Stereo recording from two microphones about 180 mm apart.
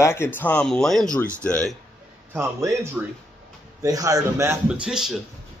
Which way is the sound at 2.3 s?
15° right (ahead or behind).